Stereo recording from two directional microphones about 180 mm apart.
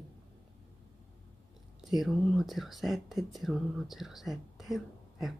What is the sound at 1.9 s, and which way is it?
Speech, centre (ahead or behind).